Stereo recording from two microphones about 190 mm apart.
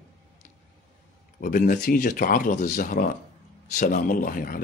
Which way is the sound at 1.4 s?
50° left (ahead or behind).